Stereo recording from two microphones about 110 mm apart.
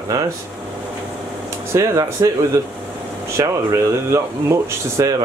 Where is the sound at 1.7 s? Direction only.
30° right (ahead or behind).